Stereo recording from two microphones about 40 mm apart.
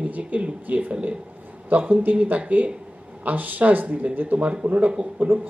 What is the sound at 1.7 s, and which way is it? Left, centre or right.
Speech, right.